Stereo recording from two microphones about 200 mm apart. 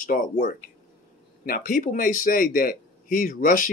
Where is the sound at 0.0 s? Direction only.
40° left (ahead or behind).